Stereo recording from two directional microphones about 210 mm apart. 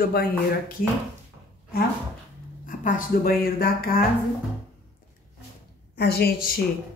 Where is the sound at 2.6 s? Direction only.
40° left (ahead or behind).